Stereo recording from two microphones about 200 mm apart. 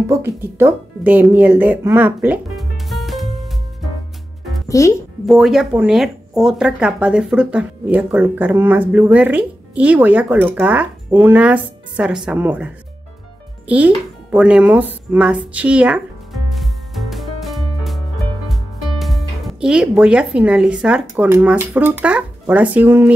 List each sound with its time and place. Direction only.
0.0 s speech: 15° right (ahead or behind)
1.9 s music: 10° right (ahead or behind)
4.6 s a child's voice: 15° left (ahead or behind)
5.2 s speech: centre (ahead or behind)
16.4 s music: centre (ahead or behind)